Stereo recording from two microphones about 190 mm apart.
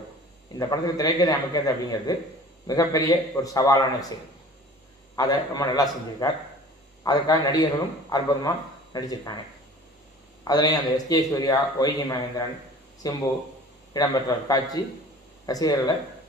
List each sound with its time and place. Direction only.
0.6 s a man's voice: 20° left (ahead or behind)
5.1 s a man's voice: 20° left (ahead or behind)
10.4 s a man's voice: 20° left (ahead or behind)